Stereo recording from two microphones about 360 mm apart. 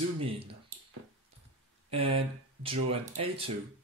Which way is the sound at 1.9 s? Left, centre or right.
Centre.